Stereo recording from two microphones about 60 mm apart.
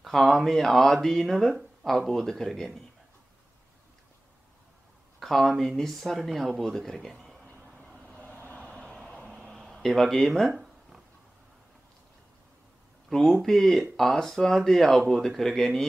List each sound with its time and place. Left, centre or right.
0.0 s speech: centre
5.2 s speech: centre
8.0 s vehicle: left
9.3 s a sound: centre
10.5 s a sound: centre
13.2 s speech: centre